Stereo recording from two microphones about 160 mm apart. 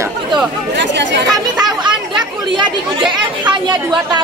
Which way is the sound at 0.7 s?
90° right.